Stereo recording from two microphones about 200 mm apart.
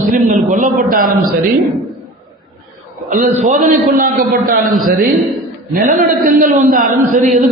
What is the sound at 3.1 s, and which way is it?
A man's voice, 45° right (ahead or behind).